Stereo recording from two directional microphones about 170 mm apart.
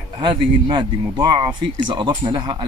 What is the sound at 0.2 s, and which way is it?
Speech, 30° right (ahead or behind).